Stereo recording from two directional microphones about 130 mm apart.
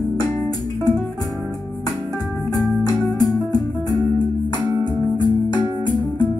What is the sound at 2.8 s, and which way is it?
Music, 30° left (ahead or behind).